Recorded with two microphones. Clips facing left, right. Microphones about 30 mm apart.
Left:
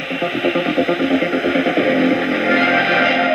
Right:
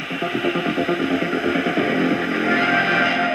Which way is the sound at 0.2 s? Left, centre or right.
Left.